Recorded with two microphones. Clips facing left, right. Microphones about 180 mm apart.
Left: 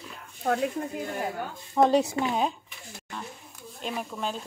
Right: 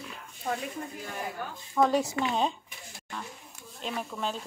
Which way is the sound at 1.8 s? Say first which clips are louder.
Left 3 dB; 25° left (ahead or behind).